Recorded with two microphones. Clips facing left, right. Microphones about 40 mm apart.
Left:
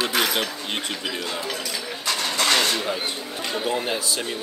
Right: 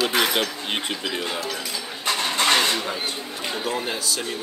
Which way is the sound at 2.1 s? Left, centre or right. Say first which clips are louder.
Right 2 dB; right.